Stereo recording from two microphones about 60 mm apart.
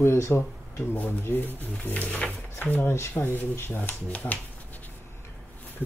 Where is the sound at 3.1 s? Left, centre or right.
Left.